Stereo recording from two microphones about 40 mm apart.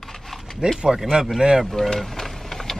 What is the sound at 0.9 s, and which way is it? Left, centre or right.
Speech, centre.